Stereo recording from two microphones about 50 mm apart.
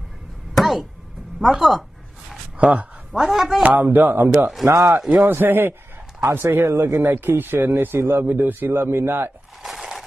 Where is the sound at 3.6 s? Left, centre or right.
Right.